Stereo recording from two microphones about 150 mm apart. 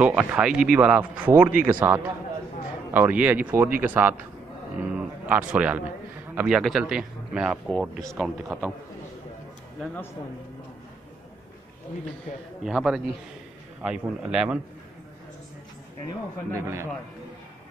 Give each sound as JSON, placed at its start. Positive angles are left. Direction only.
{"t": 0.0, "sound": "speech", "side_deg": -10}
{"t": 4.9, "sound": "music", "side_deg": -10}
{"t": 6.3, "sound": "speech", "side_deg": -5}
{"t": 12.6, "sound": "speech", "side_deg": 0}
{"t": 16.5, "sound": "speech", "side_deg": -15}